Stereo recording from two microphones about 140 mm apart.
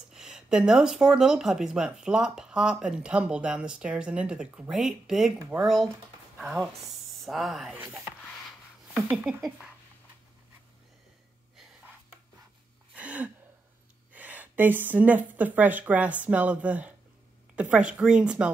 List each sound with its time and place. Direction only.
0.1 s speech: 5° right (ahead or behind)
7.7 s speech: 20° right (ahead or behind)
9.1 s speech: 5° right (ahead or behind)
12.9 s gasp: 10° right (ahead or behind)
14.1 s speech: 10° right (ahead or behind)